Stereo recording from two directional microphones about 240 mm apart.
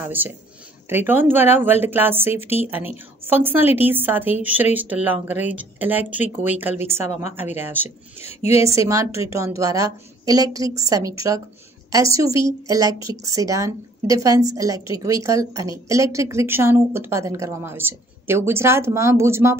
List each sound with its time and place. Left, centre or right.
0.0 s a woman's voice: centre
8.2 s a woman's voice: left
8.7 s a woman's voice: centre